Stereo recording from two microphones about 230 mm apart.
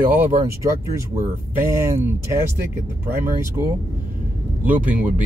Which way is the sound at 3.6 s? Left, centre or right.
Centre.